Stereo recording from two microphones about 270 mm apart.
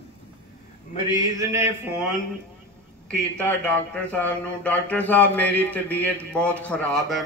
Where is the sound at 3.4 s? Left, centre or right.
Centre.